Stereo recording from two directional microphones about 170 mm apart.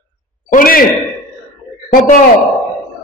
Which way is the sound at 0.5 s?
55° left (ahead or behind).